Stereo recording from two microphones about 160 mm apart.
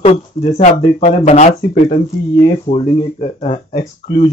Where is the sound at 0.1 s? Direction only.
40° left (ahead or behind).